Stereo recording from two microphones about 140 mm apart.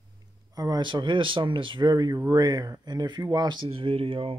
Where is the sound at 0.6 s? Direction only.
30° right (ahead or behind).